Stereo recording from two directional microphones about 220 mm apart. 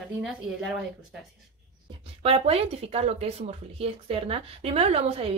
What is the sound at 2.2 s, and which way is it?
Speech, 25° right (ahead or behind).